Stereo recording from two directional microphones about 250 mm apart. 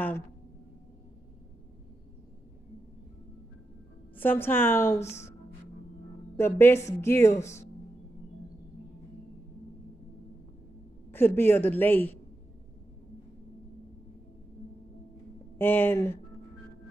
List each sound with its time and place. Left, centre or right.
4.2 s a woman's voice: centre
6.3 s a woman's voice: centre
11.1 s a woman's voice: centre
15.5 s a woman's voice: centre